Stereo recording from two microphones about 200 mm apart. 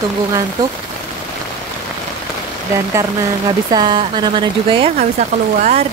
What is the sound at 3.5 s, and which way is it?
Speech, 20° right (ahead or behind).